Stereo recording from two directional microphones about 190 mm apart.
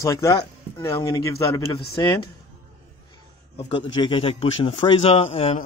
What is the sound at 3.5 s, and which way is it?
A man's voice, 25° left (ahead or behind).